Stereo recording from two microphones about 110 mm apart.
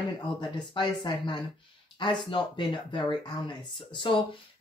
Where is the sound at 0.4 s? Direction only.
45° left (ahead or behind).